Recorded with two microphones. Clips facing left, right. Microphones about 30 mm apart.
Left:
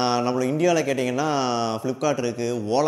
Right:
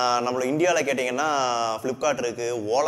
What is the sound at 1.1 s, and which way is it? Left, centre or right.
A man's voice, left.